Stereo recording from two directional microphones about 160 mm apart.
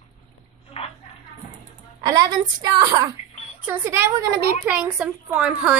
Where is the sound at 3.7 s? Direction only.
15° right (ahead or behind).